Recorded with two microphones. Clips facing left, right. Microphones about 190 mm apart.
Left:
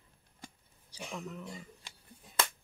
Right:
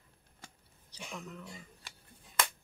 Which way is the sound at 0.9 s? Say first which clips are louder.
Left 3 dB; 10° left (ahead or behind).